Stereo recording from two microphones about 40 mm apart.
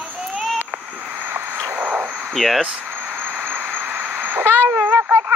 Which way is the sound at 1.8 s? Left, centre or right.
Right.